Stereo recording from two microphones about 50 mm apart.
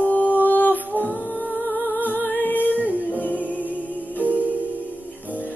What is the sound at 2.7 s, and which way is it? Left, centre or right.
Music, right.